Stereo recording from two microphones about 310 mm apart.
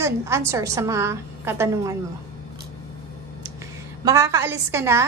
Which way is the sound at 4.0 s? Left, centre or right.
Centre.